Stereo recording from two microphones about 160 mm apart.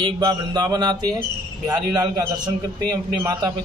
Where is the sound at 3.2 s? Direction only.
25° right (ahead or behind).